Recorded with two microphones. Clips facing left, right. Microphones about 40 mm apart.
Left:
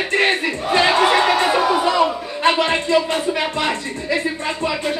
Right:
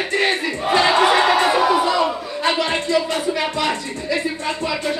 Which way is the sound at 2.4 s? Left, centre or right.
Left.